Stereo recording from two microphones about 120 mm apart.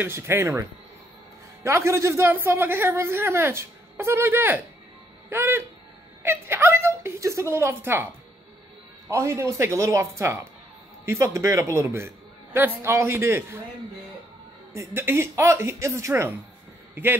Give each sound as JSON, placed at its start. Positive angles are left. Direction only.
{"t": 0.0, "sound": "a woman's voice", "side_deg": -20}
{"t": 9.1, "sound": "a woman's voice", "side_deg": -25}
{"t": 14.7, "sound": "a woman's voice", "side_deg": -20}